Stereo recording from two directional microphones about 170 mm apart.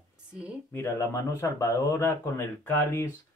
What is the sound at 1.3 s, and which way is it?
Speech, 20° left (ahead or behind).